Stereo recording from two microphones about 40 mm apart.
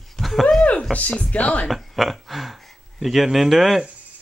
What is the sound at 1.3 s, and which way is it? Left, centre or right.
Speech, left.